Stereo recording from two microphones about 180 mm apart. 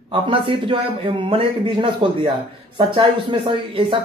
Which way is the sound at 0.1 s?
30° right (ahead or behind).